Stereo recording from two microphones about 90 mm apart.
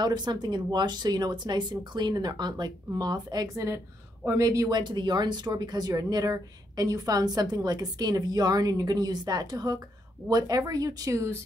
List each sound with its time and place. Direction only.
0.0 s speech: 55° right (ahead or behind); by 4.7 s 40° right (ahead or behind)
4.7 s speech: 55° right (ahead or behind); by 11.3 s 35° right (ahead or behind)